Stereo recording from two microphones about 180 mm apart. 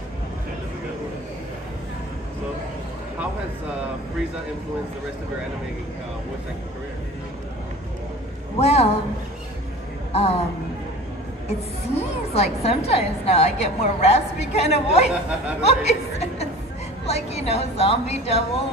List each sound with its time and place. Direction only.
8.5 s a woman's voice: 35° left (ahead or behind)
10.1 s a woman's voice: 35° left (ahead or behind)
11.4 s a woman's voice: 35° left (ahead or behind)